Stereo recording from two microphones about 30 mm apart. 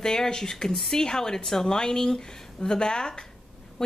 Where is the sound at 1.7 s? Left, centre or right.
Left.